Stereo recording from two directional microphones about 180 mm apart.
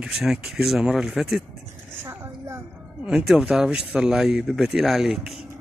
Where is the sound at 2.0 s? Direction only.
15° right (ahead or behind).